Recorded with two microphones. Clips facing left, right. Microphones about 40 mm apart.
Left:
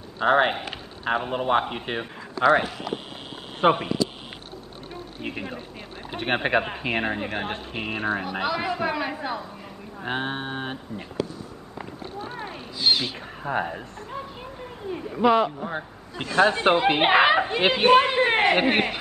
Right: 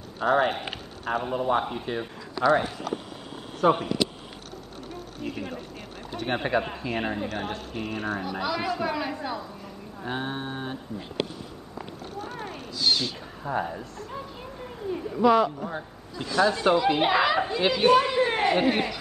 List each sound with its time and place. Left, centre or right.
0.2 s speech: left
5.2 s speech: left
6.2 s speech: left
8.3 s speech: left
10.0 s speech: left
12.3 s a sound: left
12.7 s speech: left
13.4 s speech: left
13.7 s speech: left
14.1 s speech: centre
15.7 s speech: left